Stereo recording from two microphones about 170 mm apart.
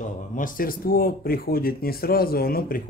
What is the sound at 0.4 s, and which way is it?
Speech, 55° left (ahead or behind).